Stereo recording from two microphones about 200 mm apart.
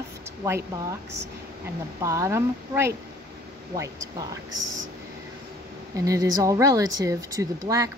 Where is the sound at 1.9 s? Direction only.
15° right (ahead or behind).